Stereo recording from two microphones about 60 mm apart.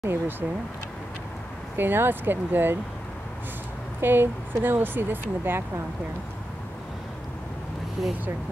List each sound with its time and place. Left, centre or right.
0.0 s speech: right
1.8 s speech: right
4.0 s speech: right
8.0 s speech: centre